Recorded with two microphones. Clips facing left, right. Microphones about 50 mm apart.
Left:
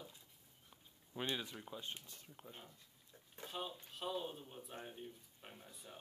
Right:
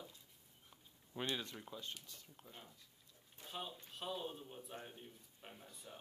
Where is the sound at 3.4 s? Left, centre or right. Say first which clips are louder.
Left 2 dB; centre.